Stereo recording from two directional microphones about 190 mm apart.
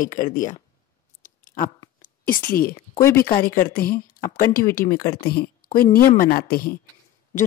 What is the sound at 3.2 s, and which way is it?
A woman's voice, 50° left (ahead or behind).